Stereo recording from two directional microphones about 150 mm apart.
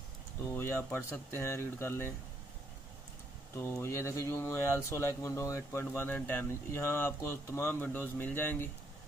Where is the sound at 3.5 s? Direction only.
15° left (ahead or behind).